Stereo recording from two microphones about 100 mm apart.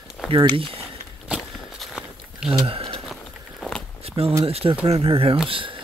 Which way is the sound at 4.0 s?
80° right.